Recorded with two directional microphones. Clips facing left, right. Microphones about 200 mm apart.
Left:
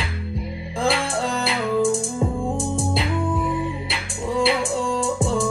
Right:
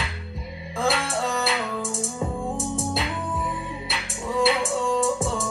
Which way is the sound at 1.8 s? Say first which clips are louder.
Left 8 dB; centre (ahead or behind).